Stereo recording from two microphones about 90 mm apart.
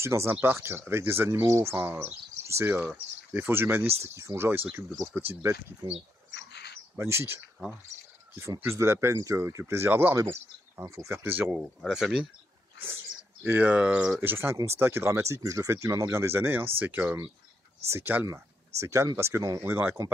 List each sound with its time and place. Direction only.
0.0 s speech: 30° right (ahead or behind)
5.4 s speech: 30° right (ahead or behind)
7.0 s speech: 30° right (ahead or behind)
8.6 s speech: 30° right (ahead or behind)
11.8 s speech: 5° right (ahead or behind)
12.8 s speech: 25° right (ahead or behind)